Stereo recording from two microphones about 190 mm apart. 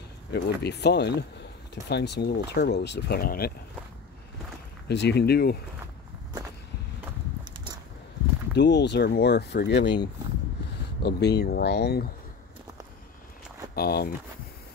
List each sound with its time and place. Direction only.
0.3 s speech: 60° left (ahead or behind)
4.8 s speech: 60° left (ahead or behind)
8.5 s speech: 65° left (ahead or behind)
13.7 s speech: 55° left (ahead or behind)